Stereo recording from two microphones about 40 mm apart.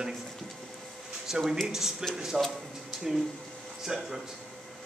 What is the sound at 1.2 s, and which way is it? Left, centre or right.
A man's voice, centre.